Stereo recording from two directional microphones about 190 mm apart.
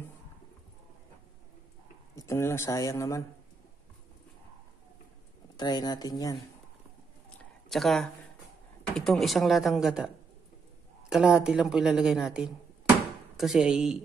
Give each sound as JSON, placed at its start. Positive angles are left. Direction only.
{"t": 2.1, "sound": "speech", "side_deg": 15}
{"t": 5.6, "sound": "speech", "side_deg": 20}
{"t": 7.7, "sound": "speech", "side_deg": 0}